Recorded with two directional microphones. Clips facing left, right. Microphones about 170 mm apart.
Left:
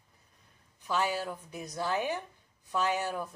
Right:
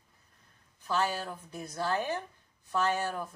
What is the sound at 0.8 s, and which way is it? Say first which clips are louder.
Speech: even; 15° left (ahead or behind).